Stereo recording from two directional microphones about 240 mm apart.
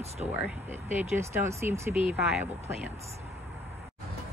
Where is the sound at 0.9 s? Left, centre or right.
Centre.